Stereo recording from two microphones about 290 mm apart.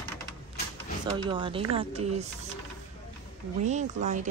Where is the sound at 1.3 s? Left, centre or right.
Centre.